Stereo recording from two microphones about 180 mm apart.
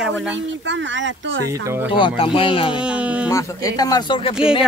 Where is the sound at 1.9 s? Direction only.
30° left (ahead or behind).